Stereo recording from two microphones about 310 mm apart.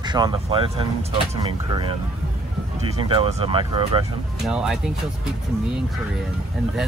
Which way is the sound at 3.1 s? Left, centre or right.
Centre.